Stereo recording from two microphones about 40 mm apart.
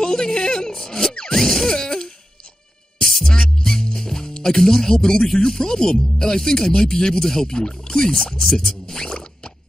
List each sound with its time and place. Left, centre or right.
0.0 s a sound: centre
0.7 s music: centre
3.0 s music: centre
3.5 s speech: centre